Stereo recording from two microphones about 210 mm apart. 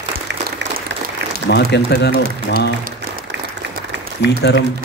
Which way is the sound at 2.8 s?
45° right (ahead or behind).